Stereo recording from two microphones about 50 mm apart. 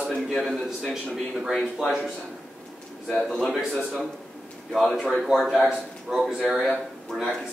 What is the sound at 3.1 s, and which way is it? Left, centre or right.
A man's voice, centre.